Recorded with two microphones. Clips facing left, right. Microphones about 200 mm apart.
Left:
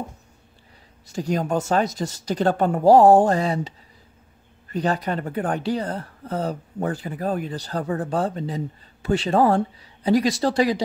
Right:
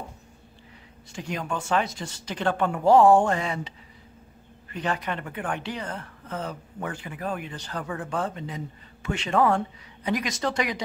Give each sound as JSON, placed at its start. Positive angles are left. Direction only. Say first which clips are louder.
{"t": 1.0, "sound": "a woman's voice", "louder": "left 8 dB", "side_deg": 40}